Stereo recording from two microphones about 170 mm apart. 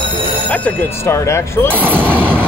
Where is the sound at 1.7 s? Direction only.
10° right (ahead or behind).